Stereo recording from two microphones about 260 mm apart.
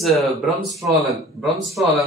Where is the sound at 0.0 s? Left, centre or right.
Centre.